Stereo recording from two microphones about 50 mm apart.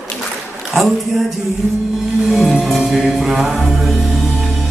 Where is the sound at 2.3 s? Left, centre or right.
Centre.